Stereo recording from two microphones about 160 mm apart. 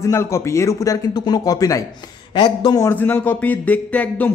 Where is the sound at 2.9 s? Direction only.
10° left (ahead or behind).